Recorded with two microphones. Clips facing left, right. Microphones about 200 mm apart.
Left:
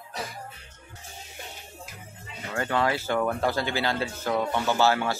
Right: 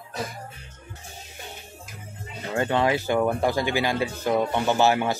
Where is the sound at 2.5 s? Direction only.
20° right (ahead or behind).